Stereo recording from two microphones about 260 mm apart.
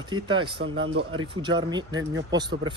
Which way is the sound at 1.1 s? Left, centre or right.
Centre.